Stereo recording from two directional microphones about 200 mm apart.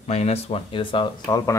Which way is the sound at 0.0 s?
35° left (ahead or behind).